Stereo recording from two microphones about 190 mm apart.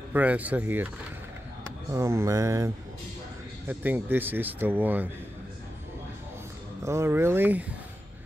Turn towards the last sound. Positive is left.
turn(degrees=-10)  # may be behind; listen again after turning